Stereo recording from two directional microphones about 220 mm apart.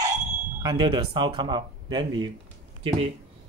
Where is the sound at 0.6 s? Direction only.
20° right (ahead or behind).